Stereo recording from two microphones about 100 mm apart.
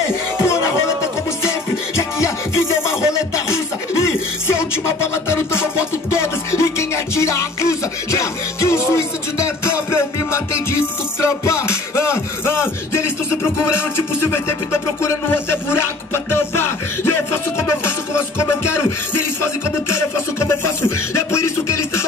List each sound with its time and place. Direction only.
0.4 s music: 30° left (ahead or behind)
15.0 s music: 25° left (ahead or behind)
17.8 s music: 25° left (ahead or behind)